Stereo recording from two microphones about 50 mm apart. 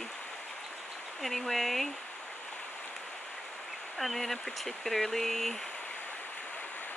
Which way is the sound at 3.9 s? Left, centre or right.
Centre.